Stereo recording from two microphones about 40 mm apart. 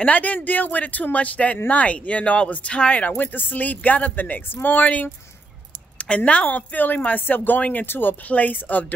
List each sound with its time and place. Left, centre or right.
0.0 s speech: left
7.8 s speech: left
8.3 s speech: left